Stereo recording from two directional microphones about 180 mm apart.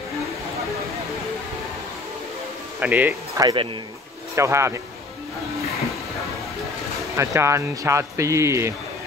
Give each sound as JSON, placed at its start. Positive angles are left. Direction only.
{"t": 2.8, "sound": "speech", "side_deg": -10}
{"t": 7.2, "sound": "speech", "side_deg": -15}